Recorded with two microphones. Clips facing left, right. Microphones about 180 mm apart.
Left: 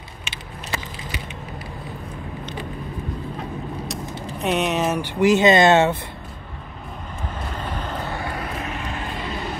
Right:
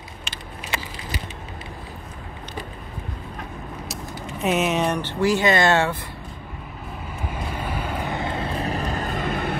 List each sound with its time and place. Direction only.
4.4 s speech: centre (ahead or behind)
5.0 s speech: 20° left (ahead or behind)
7.3 s vehicle: 10° right (ahead or behind); by 9.6 s 55° right (ahead or behind)